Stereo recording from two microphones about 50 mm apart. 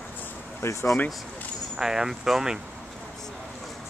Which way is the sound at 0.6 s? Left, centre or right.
Left.